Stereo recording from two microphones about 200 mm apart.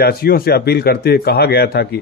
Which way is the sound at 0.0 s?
50° left (ahead or behind).